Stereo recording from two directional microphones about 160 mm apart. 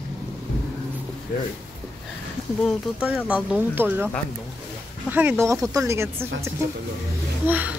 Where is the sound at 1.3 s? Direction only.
60° left (ahead or behind).